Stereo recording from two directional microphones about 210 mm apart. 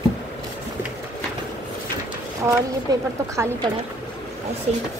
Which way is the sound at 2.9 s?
20° right (ahead or behind).